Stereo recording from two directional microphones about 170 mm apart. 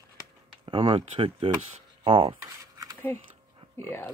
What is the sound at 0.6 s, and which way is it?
Speech, 30° right (ahead or behind).